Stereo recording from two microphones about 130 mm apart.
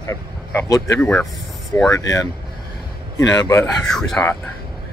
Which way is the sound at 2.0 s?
30° left (ahead or behind).